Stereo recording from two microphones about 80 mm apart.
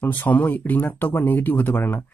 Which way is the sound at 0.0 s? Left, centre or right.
Left.